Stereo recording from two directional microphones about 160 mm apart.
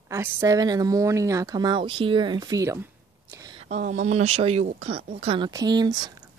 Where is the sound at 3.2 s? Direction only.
20° right (ahead or behind).